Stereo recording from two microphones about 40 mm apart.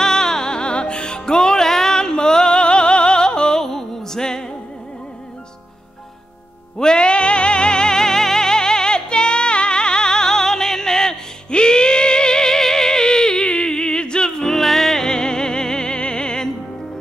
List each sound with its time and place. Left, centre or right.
0.0 s music: centre
6.8 s music: left